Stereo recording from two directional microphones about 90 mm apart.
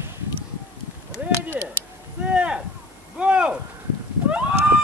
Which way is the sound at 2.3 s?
10° right (ahead or behind).